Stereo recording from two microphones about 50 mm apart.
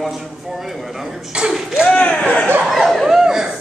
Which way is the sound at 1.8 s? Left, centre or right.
Left.